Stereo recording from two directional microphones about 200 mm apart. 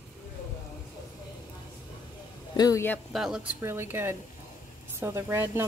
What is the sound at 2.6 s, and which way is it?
Speech, 15° left (ahead or behind).